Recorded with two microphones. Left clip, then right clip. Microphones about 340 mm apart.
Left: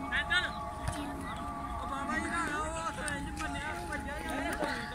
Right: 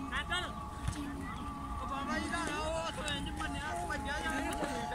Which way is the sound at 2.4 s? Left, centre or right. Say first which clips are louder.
Left 2 dB; right.